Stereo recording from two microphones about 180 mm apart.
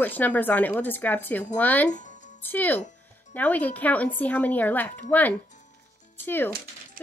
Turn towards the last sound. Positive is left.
turn(degrees=10)  # may be behind; listen again after turning